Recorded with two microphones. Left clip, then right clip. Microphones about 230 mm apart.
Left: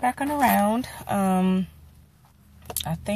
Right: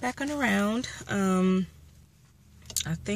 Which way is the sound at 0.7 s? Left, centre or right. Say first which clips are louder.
Left 5 dB; centre.